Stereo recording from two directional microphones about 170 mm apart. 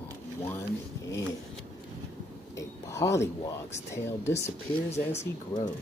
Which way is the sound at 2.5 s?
15° left (ahead or behind).